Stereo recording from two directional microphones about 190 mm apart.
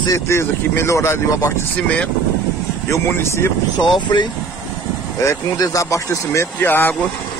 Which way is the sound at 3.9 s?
25° left (ahead or behind).